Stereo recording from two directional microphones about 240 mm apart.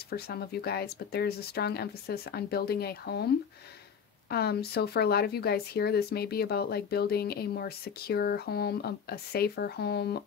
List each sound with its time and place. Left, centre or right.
0.1 s speech: left
4.3 s speech: left